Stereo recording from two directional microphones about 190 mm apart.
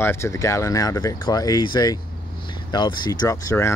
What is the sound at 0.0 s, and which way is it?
Speech, 15° left (ahead or behind).